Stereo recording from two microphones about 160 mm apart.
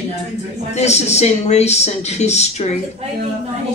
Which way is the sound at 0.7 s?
45° left (ahead or behind).